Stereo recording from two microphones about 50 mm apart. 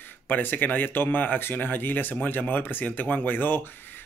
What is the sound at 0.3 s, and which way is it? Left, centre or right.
Speech, left.